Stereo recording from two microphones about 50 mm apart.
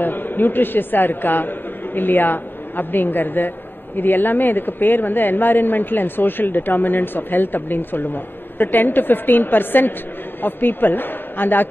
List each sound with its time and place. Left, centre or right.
0.0 s a man's voice: left